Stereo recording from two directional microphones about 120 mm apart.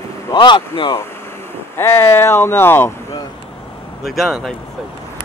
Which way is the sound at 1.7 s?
20° left (ahead or behind).